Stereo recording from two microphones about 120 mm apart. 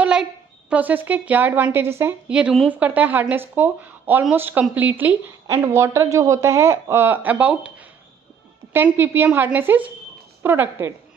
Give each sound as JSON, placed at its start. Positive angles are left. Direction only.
{"t": 0.0, "sound": "a woman's voice", "side_deg": -10}
{"t": 2.2, "sound": "a woman's voice", "side_deg": -10}